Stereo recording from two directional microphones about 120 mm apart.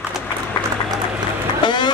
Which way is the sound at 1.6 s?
40° left (ahead or behind).